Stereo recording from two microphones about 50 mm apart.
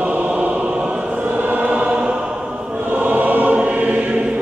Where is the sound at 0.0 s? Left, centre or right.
Right.